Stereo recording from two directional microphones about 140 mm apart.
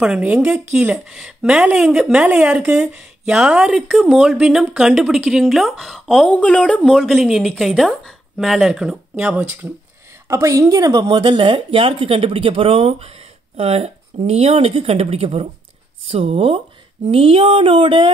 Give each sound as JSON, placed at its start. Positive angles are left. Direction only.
{"t": 0.0, "sound": "speech", "side_deg": -5}
{"t": 10.2, "sound": "speech", "side_deg": -20}